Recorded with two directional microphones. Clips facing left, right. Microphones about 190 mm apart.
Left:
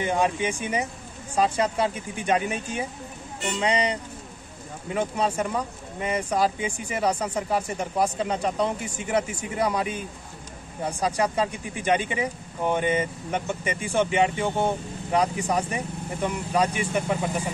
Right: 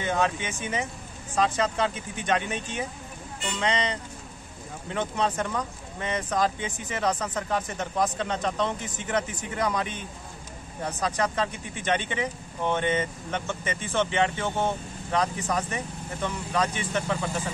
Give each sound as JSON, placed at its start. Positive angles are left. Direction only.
{"t": 0.0, "sound": "speech", "side_deg": 10}